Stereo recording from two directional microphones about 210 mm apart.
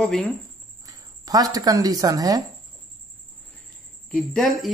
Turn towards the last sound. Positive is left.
turn(degrees=0)  # may be behind; listen again after turning